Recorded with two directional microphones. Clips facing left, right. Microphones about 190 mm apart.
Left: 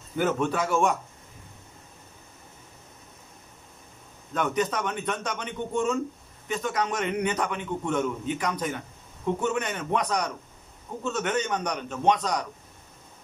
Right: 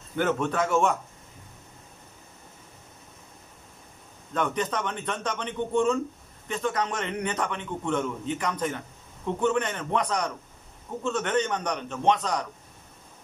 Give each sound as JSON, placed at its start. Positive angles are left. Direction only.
{"t": 0.1, "sound": "a man's voice", "side_deg": 5}
{"t": 4.3, "sound": "a man's voice", "side_deg": 5}